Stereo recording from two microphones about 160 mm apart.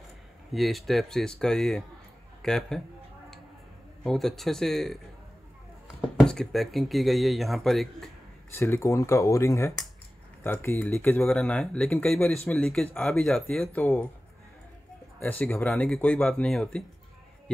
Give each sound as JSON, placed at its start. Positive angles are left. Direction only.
{"t": 0.5, "sound": "speech", "side_deg": 0}
{"t": 4.0, "sound": "speech", "side_deg": 0}
{"t": 6.1, "sound": "speech", "side_deg": 5}
{"t": 8.5, "sound": "speech", "side_deg": 15}
{"t": 15.1, "sound": "speech", "side_deg": 10}